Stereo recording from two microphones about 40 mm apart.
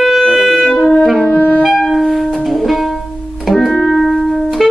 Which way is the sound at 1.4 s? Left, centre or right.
Left.